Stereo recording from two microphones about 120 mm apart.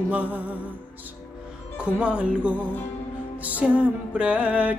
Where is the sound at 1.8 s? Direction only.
10° right (ahead or behind).